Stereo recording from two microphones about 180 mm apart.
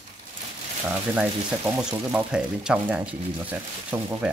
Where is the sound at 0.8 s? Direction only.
10° right (ahead or behind).